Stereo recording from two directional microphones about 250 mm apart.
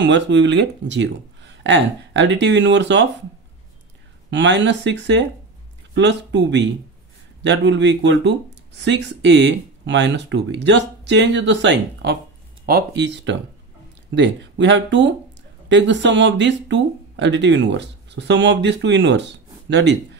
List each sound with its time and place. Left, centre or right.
0.0 s speech: right
4.3 s speech: right